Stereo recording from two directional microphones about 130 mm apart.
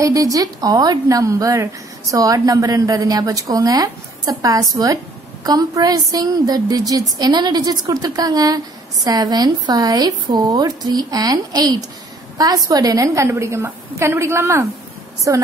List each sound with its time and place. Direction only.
0.0 s a woman's voice: 25° right (ahead or behind)